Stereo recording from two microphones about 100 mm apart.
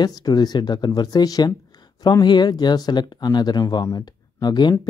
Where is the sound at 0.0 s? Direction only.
45° left (ahead or behind).